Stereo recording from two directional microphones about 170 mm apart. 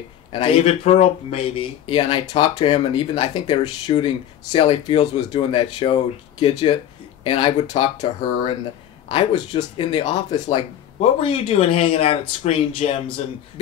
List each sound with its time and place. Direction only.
0.3 s speech: 30° left (ahead or behind)